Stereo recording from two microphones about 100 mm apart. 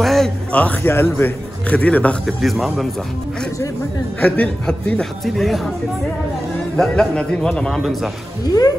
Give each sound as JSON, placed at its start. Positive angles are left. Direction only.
{"t": 0.0, "sound": "a sound", "side_deg": 0}
{"t": 0.5, "sound": "speech", "side_deg": 15}
{"t": 2.4, "sound": "a man's voice", "side_deg": 0}
{"t": 4.2, "sound": "speech", "side_deg": 10}
{"t": 6.8, "sound": "a man's voice", "side_deg": 5}
{"t": 8.5, "sound": "music", "side_deg": 40}